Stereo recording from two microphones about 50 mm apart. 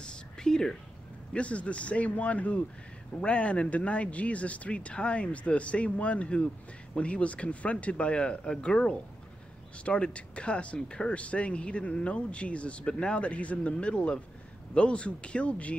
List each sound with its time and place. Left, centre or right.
0.0 s whispering: centre
1.3 s speech: left